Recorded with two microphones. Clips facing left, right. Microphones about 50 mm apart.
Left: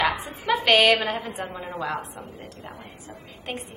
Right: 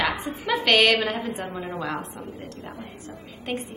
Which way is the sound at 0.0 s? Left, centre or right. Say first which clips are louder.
Left 1 dB; centre.